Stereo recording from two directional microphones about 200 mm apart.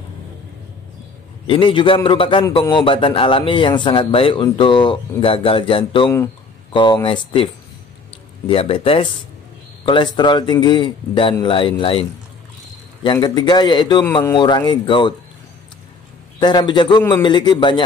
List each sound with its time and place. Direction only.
1.5 s a man's voice: 25° left (ahead or behind)
6.0 s speech: 10° left (ahead or behind)
6.7 s a man's voice: 25° left (ahead or behind)
8.5 s a man's voice: 25° left (ahead or behind)
16.3 s a man's voice: 20° left (ahead or behind)